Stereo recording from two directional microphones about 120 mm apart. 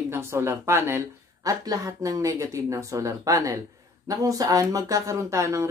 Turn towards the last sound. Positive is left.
turn(degrees=-25)  # may be behind; listen again after turning